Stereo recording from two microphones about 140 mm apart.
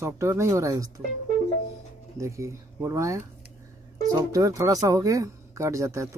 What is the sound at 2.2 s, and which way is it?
Speech, 20° right (ahead or behind).